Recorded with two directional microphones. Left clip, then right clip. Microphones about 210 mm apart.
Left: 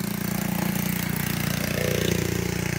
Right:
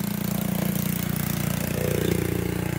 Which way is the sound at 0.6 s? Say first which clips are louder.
Left 1 dB; 50° right (ahead or behind).